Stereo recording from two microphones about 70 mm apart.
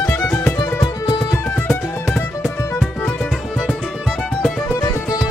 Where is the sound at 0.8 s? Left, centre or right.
Left.